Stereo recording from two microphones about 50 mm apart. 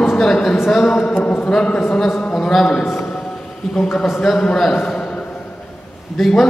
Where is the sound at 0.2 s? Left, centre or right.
Centre.